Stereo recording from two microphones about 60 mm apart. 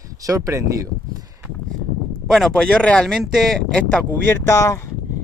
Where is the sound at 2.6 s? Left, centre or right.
Centre.